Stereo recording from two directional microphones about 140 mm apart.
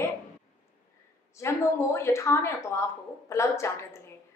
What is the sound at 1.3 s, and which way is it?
A woman's voice, 20° left (ahead or behind).